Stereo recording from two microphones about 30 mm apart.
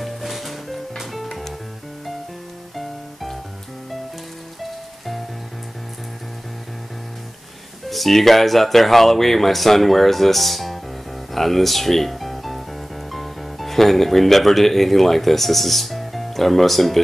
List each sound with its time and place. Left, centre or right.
0.0 s music: centre
2.7 s music: centre
7.9 s speech: centre
11.3 s music: centre
13.1 s speech: centre